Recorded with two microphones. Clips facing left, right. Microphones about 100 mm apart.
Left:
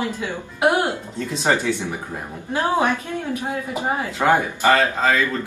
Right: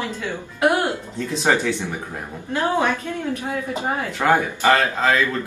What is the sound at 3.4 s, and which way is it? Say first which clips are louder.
A woman's voice: left 1 dB; 15° left (ahead or behind).